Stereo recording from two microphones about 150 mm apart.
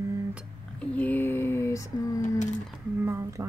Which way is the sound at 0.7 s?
10° left (ahead or behind).